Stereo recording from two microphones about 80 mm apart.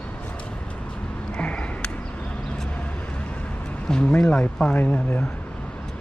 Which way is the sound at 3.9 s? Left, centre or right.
Centre.